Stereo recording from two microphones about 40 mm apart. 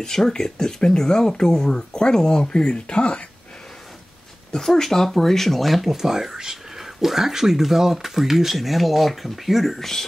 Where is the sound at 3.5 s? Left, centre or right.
Centre.